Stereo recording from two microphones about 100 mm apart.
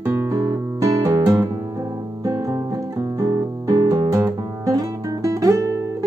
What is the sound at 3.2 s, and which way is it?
Music, 40° right (ahead or behind).